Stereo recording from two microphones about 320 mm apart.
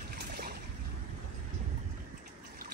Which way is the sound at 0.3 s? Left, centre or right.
Right.